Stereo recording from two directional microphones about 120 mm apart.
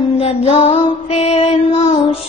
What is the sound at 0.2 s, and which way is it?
Mantra, 60° left (ahead or behind).